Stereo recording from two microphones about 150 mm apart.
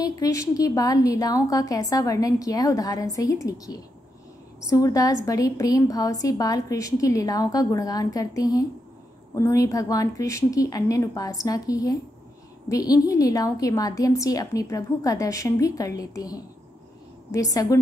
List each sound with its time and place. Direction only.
0.2 s a woman's voice: 20° left (ahead or behind)